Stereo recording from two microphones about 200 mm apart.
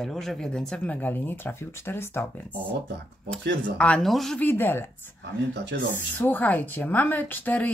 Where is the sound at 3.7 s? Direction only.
5° left (ahead or behind).